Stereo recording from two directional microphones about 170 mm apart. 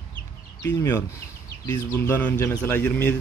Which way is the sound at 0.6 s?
15° left (ahead or behind).